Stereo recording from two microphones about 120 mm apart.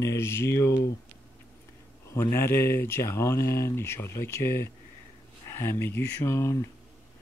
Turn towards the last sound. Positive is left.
turn(degrees=25)  # may be behind; listen again after turning